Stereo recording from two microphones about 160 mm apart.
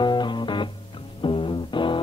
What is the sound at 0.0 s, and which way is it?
Music, 30° left (ahead or behind).